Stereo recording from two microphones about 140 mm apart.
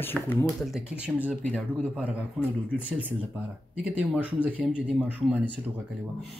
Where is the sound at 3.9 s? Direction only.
10° right (ahead or behind).